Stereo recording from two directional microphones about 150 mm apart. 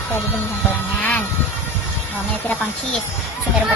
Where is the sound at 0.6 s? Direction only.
10° left (ahead or behind).